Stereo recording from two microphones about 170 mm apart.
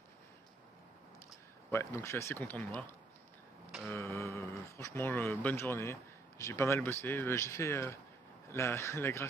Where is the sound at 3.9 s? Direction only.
15° left (ahead or behind).